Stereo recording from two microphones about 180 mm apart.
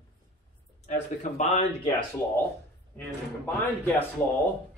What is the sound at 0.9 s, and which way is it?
Speech, 45° left (ahead or behind).